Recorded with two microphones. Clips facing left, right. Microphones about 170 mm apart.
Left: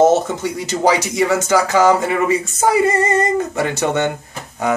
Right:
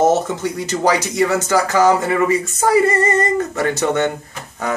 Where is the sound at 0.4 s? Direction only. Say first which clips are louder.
Left 1 dB; 15° left (ahead or behind).